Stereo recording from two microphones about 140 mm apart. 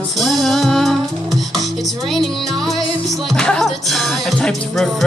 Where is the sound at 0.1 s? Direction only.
Centre (ahead or behind).